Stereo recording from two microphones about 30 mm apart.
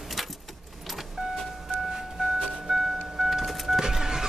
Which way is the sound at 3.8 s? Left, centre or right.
Centre.